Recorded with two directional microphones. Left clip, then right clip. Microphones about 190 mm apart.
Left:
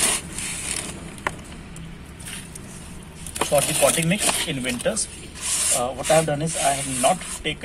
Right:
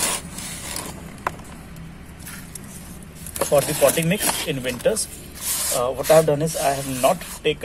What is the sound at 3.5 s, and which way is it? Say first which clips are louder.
Speech: right 2 dB; 35° right (ahead or behind).